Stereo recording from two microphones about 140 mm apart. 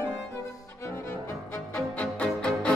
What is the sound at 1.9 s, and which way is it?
Music, 10° left (ahead or behind).